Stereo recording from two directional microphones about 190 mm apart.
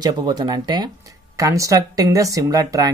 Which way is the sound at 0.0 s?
20° right (ahead or behind).